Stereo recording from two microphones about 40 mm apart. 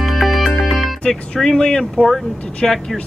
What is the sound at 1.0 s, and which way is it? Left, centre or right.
Speech, centre.